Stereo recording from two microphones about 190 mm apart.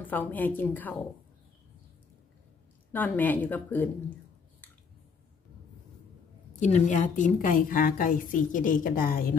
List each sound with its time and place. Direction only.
0.0 s speech: 10° left (ahead or behind)
2.9 s speech: 10° left (ahead or behind)
6.6 s a woman's voice: 40° left (ahead or behind)